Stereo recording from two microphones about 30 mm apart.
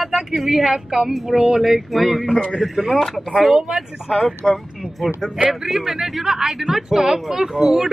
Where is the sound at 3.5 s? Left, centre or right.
Right.